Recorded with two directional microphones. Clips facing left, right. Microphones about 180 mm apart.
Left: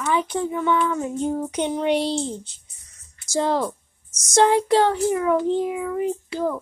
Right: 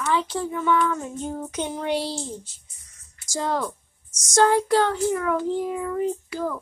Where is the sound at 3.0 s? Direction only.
25° left (ahead or behind).